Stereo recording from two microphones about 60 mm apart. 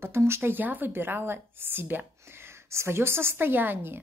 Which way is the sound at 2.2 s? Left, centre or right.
Right.